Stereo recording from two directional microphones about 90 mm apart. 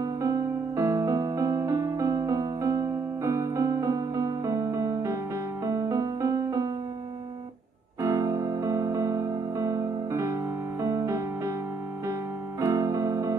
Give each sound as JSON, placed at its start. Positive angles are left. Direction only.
{"t": 0.0, "sound": "music", "side_deg": -40}
{"t": 8.1, "sound": "music", "side_deg": -40}